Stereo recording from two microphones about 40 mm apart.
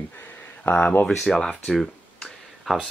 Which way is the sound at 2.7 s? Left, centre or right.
Centre.